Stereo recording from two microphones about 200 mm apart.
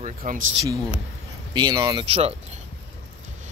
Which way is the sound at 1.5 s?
20° right (ahead or behind).